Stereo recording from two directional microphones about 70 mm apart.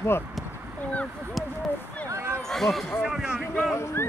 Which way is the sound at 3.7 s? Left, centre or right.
Left.